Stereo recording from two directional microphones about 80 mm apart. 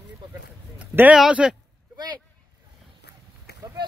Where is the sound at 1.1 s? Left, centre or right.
Centre.